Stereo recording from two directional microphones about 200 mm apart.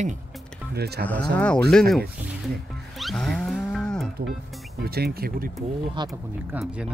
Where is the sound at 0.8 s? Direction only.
55° right (ahead or behind).